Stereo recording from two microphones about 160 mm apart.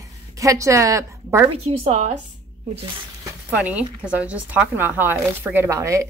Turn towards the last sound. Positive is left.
turn(degrees=-20)  # may be behind; listen again after turning